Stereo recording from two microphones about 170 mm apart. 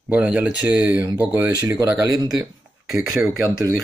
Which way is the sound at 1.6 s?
20° right (ahead or behind).